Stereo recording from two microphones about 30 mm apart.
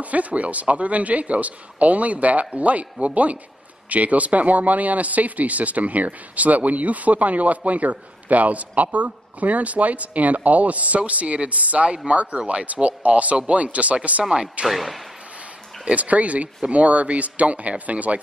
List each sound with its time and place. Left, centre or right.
0.0 s a man's voice: right
14.7 s speech: centre
15.9 s a man's voice: right